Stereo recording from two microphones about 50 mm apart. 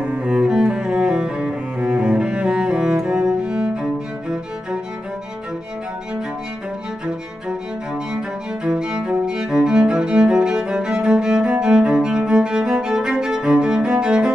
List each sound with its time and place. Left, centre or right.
0.0 s cello: right
7.4 s music: centre